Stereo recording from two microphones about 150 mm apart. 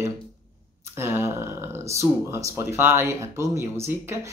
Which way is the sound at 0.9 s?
15° right (ahead or behind).